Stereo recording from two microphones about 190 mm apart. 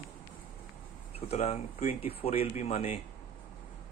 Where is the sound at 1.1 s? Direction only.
35° left (ahead or behind).